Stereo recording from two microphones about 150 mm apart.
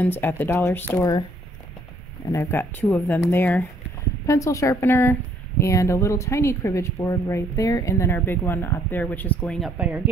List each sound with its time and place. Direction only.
0.0 s speech: 15° left (ahead or behind)
2.3 s speech: 15° left (ahead or behind)
9.8 s speech: 10° right (ahead or behind)